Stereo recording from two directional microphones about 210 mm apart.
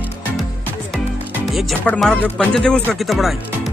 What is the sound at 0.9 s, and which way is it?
Speech, centre (ahead or behind).